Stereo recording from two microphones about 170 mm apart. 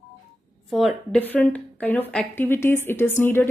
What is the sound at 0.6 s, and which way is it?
A woman's voice, centre (ahead or behind).